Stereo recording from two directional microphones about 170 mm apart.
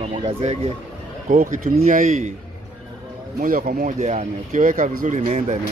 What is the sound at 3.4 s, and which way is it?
Speech, 55° right (ahead or behind).